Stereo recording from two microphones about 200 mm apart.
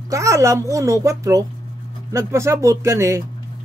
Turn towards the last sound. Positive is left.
turn(degrees=-15)  # may be behind; listen again after turning